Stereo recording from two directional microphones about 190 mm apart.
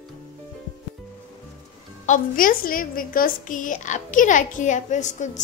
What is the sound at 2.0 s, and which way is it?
A woman's voice, 45° left (ahead or behind).